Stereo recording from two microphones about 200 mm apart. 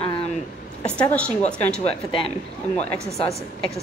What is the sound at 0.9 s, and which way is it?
Speech, 5° left (ahead or behind).